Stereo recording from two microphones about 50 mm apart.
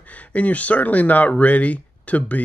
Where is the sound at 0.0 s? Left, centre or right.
Left.